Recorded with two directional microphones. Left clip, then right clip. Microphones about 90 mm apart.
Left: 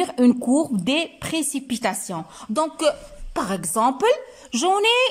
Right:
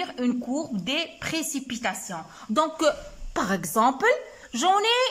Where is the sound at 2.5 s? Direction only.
15° left (ahead or behind).